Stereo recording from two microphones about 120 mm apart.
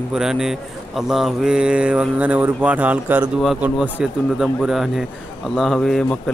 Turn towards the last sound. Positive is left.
turn(degrees=5)  # may be behind; listen again after turning